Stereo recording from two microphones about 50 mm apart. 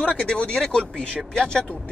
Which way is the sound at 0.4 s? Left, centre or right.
Left.